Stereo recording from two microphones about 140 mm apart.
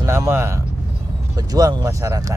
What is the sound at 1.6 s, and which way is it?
Speech, 25° right (ahead or behind).